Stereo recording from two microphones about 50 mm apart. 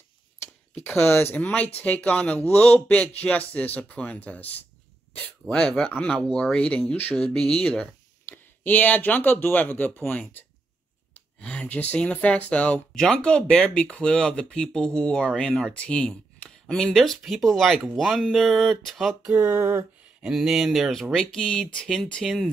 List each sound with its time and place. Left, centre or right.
0.4 s a sound: left
1.3 s speech: left
5.4 s speech: centre
5.9 s speech: left
8.3 s speech: left
11.3 s a sound: left
11.6 s speech: left
12.9 s speech: centre
19.3 s a sound: right
20.2 s speech: centre
21.1 s speech: centre